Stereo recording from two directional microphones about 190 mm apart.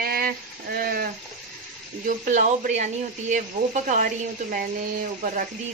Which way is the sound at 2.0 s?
40° right (ahead or behind).